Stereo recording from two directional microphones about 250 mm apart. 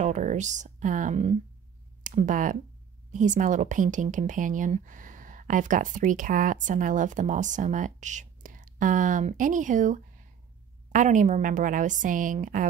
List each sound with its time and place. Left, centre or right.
0.0 s speech: right